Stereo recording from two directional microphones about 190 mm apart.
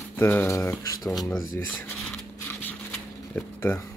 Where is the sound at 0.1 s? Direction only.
10° left (ahead or behind).